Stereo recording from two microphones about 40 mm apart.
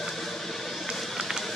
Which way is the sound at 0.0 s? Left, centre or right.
Centre.